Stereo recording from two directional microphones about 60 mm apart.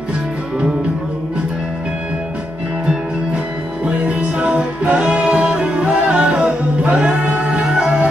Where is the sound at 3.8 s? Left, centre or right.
Centre.